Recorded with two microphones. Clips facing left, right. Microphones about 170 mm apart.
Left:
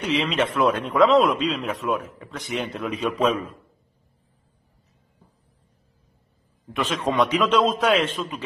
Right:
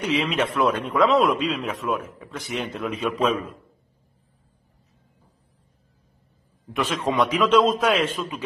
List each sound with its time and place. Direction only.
0.0 s a man's voice: centre (ahead or behind)
6.7 s a man's voice: 5° right (ahead or behind)